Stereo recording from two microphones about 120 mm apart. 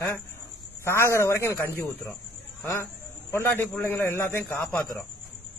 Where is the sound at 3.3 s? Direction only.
20° left (ahead or behind).